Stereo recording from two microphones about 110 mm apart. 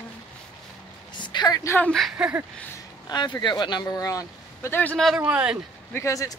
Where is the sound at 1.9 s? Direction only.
Centre (ahead or behind).